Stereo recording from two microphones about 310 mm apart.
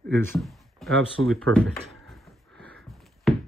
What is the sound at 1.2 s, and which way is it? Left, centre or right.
Speech, centre.